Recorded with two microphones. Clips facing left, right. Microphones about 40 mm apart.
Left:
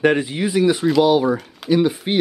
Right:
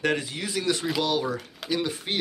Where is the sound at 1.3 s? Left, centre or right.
Centre.